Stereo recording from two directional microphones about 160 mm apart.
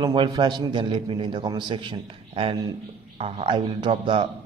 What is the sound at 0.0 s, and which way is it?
A man's voice, 30° right (ahead or behind).